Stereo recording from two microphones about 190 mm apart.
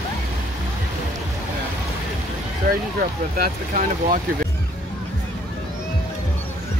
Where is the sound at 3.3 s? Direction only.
50° right (ahead or behind).